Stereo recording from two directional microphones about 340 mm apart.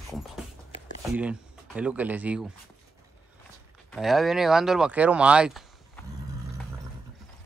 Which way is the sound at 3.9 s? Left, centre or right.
Centre.